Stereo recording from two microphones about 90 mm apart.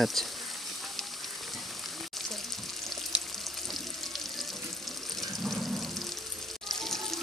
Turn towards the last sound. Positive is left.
turn(degrees=5)  # may be behind; listen again after turning